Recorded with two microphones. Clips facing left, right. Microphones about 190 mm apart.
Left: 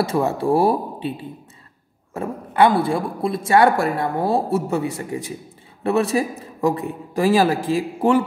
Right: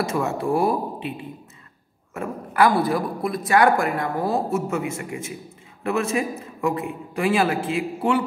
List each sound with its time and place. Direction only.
0.0 s a man's voice: 35° left (ahead or behind)